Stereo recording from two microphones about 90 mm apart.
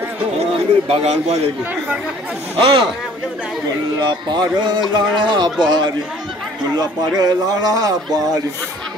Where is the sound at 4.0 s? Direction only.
55° right (ahead or behind).